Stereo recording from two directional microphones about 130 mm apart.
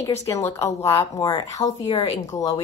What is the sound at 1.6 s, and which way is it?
Speech, 45° left (ahead or behind).